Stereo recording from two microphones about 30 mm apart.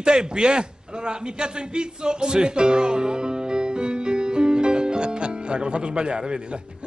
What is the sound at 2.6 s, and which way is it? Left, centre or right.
Music, right.